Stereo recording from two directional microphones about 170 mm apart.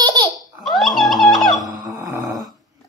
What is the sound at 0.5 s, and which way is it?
Music, centre (ahead or behind).